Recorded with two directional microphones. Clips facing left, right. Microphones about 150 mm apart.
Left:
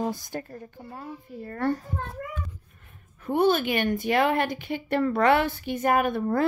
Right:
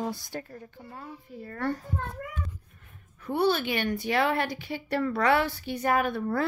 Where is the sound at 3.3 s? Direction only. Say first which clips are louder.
Left 3 dB; 50° left (ahead or behind).